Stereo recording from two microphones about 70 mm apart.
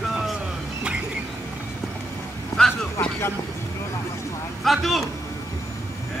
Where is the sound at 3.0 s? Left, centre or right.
Left.